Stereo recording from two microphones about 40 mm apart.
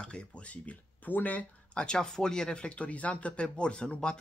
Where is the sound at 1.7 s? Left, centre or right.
Left.